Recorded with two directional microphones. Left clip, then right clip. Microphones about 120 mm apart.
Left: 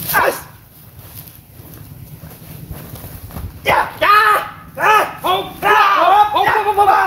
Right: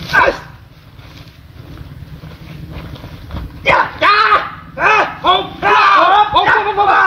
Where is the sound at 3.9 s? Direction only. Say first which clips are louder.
Right 1 dB; 40° left (ahead or behind).